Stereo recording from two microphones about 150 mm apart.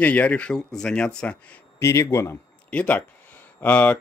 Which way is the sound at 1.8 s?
20° left (ahead or behind).